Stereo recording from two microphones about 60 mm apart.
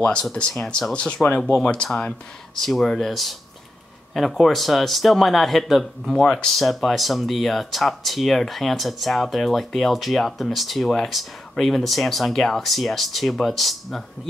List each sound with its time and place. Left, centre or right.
0.0 s speech: centre
2.6 s speech: centre